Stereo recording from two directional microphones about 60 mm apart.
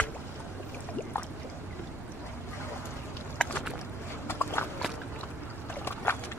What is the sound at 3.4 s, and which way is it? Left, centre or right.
Boat, centre.